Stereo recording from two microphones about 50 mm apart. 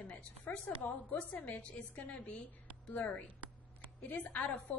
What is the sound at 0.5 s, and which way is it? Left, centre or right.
A woman's voice, left.